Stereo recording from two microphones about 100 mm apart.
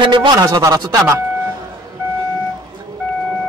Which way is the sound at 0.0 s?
50° right (ahead or behind).